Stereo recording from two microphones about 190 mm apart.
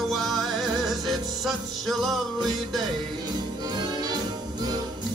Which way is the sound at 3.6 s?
20° right (ahead or behind).